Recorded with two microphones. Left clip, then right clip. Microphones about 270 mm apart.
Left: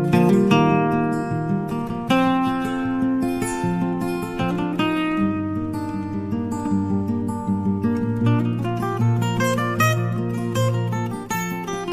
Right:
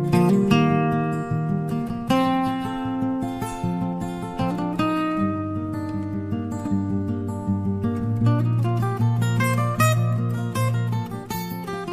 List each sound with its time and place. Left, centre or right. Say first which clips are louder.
0.1 s music: left 2 dB; right
4.7 s music: left 1 dB; right
9.4 s music: left 2 dB; right